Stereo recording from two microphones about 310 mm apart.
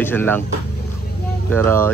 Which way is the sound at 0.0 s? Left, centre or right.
Centre.